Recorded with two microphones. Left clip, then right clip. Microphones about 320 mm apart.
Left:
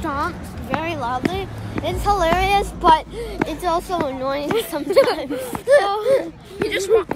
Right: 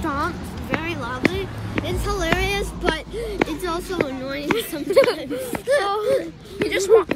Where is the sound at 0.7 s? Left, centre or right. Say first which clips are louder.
Left 4 dB; centre.